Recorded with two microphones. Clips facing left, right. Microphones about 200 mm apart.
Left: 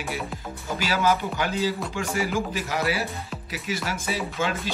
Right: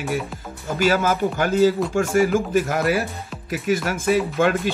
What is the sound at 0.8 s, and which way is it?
Speech, 50° right (ahead or behind).